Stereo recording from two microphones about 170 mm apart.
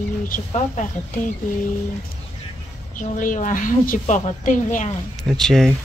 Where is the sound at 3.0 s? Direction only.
50° left (ahead or behind).